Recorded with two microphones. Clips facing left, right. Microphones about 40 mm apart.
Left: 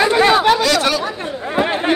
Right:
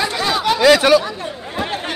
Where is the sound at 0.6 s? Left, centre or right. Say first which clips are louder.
Right 5 dB; centre.